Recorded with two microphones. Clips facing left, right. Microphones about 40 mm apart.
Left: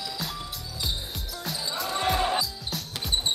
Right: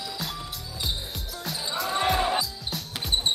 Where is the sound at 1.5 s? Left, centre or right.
Centre.